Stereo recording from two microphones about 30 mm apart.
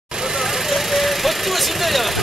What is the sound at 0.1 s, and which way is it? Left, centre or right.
Vehicle, right.